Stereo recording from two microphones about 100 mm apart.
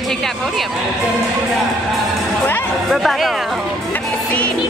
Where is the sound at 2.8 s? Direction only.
Centre (ahead or behind).